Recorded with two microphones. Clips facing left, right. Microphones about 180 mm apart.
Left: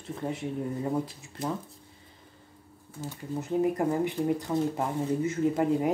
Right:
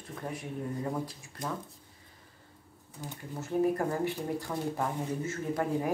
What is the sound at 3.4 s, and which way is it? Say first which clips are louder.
Speech: left 2 dB; 15° left (ahead or behind).